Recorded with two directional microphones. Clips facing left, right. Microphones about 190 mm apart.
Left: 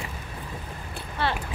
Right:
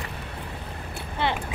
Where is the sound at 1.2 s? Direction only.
20° right (ahead or behind).